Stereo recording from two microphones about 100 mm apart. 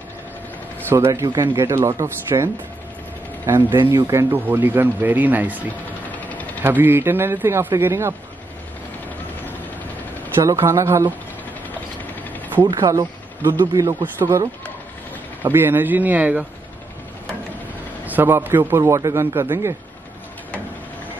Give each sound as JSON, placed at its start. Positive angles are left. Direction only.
{"t": 0.7, "sound": "speech", "side_deg": -20}
{"t": 6.1, "sound": "engine", "side_deg": 15}
{"t": 6.6, "sound": "speech", "side_deg": -20}
{"t": 10.4, "sound": "speech", "side_deg": -30}
{"t": 12.6, "sound": "speech", "side_deg": -35}
{"t": 13.4, "sound": "speech", "side_deg": -25}
{"t": 15.4, "sound": "speech", "side_deg": -20}
{"t": 18.0, "sound": "speech", "side_deg": -20}